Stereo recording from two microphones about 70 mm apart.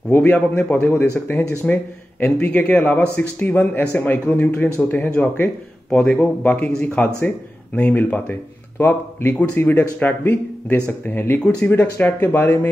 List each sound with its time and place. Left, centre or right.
0.1 s speech: left